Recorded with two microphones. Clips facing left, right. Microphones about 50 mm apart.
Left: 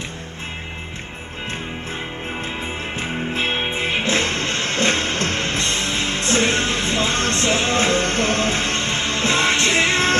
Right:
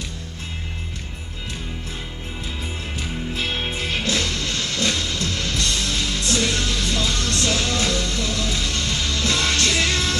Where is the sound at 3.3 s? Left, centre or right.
Left.